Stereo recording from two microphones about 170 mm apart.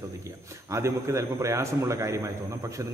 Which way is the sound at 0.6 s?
15° right (ahead or behind).